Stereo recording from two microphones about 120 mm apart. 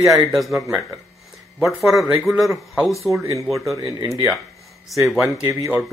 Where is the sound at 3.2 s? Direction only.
25° right (ahead or behind).